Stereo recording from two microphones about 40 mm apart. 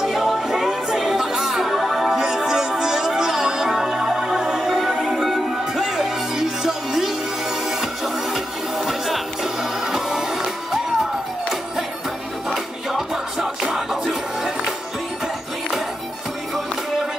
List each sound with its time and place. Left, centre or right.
0.0 s music: centre
12.9 s music: centre